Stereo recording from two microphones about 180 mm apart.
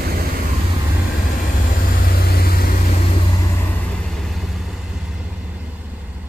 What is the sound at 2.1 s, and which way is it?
Vehicle, 60° left (ahead or behind).